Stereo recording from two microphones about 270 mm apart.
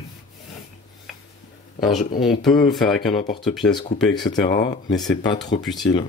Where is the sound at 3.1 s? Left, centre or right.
Centre.